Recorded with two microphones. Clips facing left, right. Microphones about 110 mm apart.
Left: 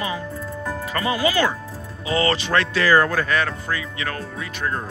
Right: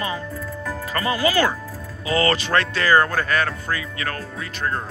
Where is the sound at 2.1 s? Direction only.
25° left (ahead or behind).